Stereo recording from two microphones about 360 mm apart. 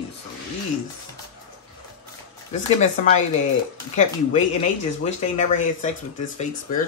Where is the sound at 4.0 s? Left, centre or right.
Centre.